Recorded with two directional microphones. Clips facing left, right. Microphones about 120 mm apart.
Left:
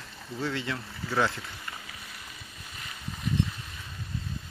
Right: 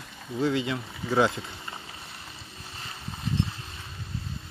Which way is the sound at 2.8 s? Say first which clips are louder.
Even; 30° right (ahead or behind).